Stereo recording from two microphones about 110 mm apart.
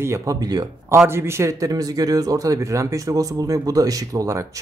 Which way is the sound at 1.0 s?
25° right (ahead or behind).